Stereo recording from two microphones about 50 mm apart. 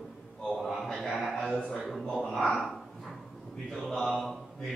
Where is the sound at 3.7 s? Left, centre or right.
Centre.